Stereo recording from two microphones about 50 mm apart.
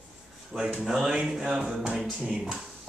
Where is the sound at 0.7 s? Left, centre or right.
Centre.